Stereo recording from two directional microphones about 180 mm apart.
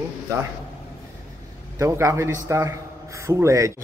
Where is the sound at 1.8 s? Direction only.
15° right (ahead or behind).